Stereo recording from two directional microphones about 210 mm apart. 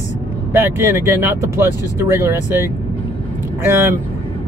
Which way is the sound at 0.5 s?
10° right (ahead or behind).